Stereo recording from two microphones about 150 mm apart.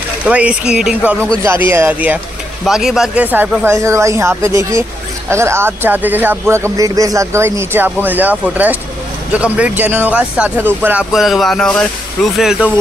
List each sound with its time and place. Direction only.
0.2 s speech: 10° right (ahead or behind)
1.3 s speech: 20° right (ahead or behind)